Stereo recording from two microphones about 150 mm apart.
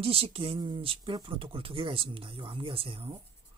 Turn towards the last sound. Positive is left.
turn(degrees=-35)  # may be behind; listen again after turning